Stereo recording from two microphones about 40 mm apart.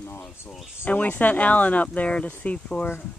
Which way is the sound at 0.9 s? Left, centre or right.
Left.